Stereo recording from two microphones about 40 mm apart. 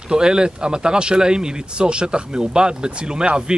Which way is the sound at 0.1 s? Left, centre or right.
Centre.